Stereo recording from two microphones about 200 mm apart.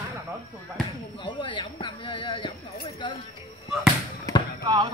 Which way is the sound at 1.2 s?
25° left (ahead or behind).